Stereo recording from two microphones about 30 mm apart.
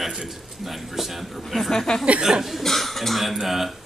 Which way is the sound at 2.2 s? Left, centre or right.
Centre.